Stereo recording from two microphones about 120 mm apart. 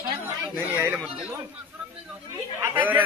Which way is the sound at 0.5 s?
20° right (ahead or behind).